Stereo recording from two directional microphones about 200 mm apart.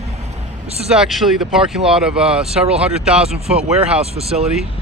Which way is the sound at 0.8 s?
Centre (ahead or behind).